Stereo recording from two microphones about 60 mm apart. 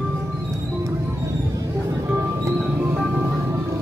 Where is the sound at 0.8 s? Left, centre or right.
Right.